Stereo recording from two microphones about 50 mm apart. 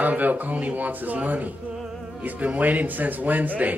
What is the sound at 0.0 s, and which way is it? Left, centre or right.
A man's voice, right.